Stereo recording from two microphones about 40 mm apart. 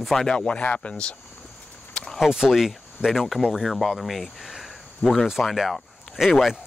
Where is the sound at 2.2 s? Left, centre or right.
Centre.